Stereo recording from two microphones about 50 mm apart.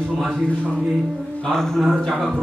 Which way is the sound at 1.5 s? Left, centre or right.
Centre.